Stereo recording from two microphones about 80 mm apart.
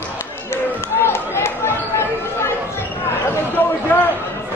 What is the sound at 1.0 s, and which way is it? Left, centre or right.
Chatter, left.